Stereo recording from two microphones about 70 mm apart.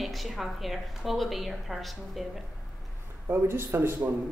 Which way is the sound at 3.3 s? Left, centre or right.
Right.